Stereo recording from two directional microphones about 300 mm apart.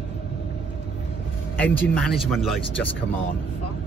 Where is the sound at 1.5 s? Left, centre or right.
Centre.